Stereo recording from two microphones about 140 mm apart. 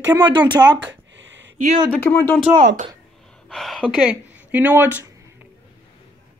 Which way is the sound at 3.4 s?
Centre (ahead or behind).